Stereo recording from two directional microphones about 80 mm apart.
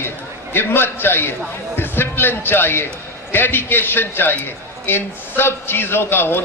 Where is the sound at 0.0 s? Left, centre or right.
Left.